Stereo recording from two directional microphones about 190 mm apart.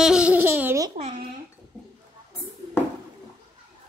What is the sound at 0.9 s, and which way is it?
Speech, 35° right (ahead or behind).